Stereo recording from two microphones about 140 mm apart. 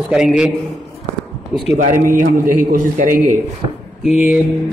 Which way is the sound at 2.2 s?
75° right (ahead or behind).